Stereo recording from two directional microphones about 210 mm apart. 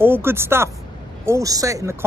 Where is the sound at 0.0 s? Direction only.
10° right (ahead or behind).